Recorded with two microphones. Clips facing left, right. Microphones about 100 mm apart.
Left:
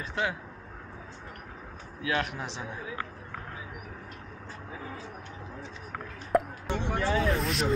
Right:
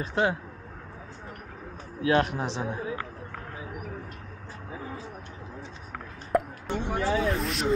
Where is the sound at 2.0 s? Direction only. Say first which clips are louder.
Right 7 dB; 35° right (ahead or behind).